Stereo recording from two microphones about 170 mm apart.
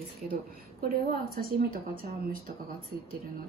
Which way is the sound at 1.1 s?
60° right (ahead or behind).